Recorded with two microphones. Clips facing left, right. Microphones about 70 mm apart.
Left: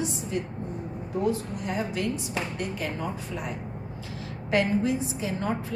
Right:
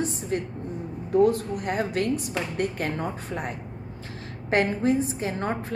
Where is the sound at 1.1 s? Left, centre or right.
Right.